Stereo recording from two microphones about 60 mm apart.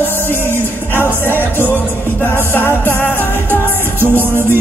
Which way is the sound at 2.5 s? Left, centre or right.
Left.